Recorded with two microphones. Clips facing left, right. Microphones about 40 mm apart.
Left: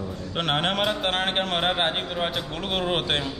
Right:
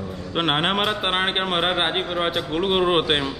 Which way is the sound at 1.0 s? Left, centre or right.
Centre.